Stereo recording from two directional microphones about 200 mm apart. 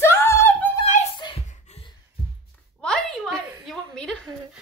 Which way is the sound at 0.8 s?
35° left (ahead or behind).